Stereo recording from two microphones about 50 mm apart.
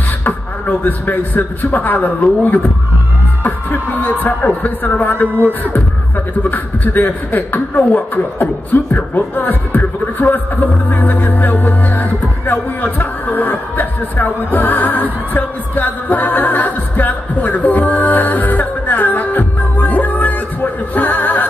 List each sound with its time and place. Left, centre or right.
0.2 s a man's voice: left